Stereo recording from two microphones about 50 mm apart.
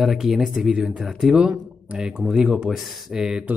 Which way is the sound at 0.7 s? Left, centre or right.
Centre.